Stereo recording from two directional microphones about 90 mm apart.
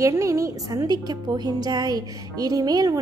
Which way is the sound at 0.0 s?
35° right (ahead or behind).